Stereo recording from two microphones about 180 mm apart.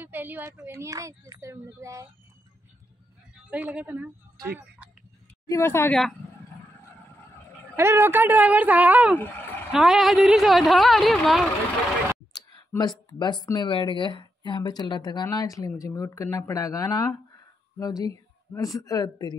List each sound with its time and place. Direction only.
0.0 s a woman's voice: 10° right (ahead or behind)
3.4 s speech: 10° right (ahead or behind)
5.5 s a woman's voice: 15° left (ahead or behind)
7.7 s speech: 15° right (ahead or behind)
9.1 s speech: 10° left (ahead or behind)
9.7 s a woman's voice: centre (ahead or behind)
12.3 s a woman's voice: 20° left (ahead or behind)